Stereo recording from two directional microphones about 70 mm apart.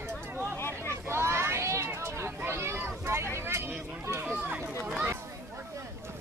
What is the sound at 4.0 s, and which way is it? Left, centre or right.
Run, right.